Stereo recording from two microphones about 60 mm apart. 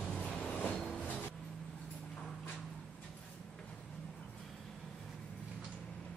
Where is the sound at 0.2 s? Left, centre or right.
Left.